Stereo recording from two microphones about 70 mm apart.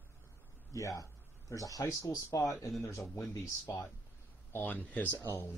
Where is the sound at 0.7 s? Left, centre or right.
Left.